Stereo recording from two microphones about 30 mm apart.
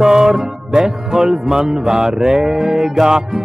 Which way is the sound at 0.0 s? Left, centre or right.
Centre.